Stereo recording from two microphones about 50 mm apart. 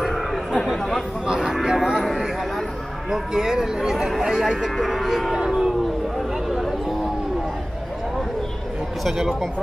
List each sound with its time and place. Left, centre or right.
0.0 s chatter: centre
0.7 s speech: centre
1.2 s a sound: centre
3.1 s speech: centre
5.3 s speech: centre
6.1 s a sound: centre
9.0 s speech: centre